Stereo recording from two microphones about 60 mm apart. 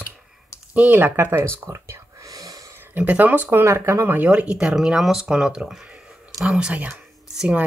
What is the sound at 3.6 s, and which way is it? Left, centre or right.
Speech, right.